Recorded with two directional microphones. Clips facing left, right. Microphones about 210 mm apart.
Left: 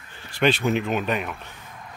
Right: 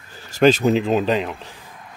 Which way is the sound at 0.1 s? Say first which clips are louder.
Right 7 dB; 40° right (ahead or behind).